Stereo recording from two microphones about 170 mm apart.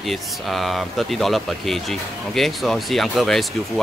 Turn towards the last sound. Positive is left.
turn(degrees=0)  # may be behind; listen again after turning